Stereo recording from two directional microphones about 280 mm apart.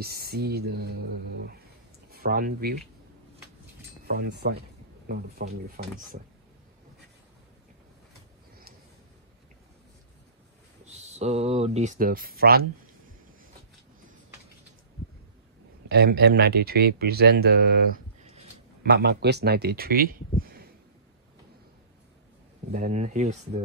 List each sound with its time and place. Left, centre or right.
0.0 s speech: right
4.1 s speech: right
10.9 s speech: right
15.9 s speech: right
22.7 s speech: right